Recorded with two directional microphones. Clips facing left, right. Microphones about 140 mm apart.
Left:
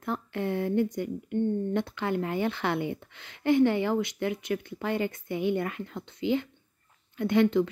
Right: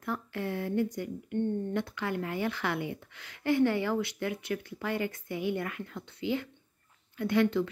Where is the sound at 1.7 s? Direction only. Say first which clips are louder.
Left 4 dB; 25° left (ahead or behind).